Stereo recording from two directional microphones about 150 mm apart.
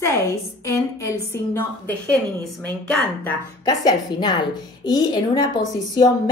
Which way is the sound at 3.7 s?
25° left (ahead or behind).